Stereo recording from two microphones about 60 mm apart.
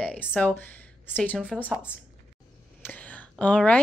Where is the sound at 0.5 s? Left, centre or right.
Left.